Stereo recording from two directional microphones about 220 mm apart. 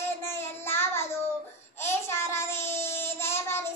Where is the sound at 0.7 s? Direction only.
10° left (ahead or behind).